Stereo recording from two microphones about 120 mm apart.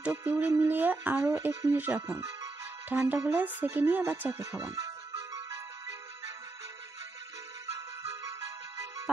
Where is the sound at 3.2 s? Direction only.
15° right (ahead or behind).